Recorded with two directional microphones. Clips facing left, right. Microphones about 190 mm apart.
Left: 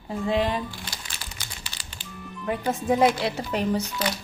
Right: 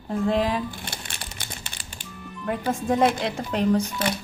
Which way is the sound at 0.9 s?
55° right (ahead or behind).